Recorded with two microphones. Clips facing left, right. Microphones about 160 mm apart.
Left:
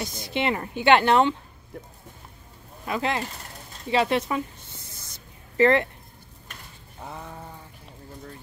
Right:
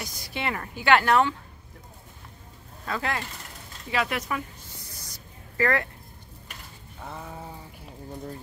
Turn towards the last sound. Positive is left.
turn(degrees=-5)  # may be behind; listen again after turning